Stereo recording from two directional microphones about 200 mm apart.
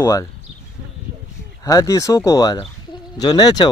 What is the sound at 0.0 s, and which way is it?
Speech, 15° left (ahead or behind).